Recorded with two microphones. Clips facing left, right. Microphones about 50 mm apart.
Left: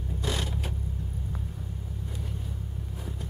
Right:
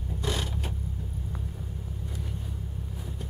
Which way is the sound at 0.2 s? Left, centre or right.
Centre.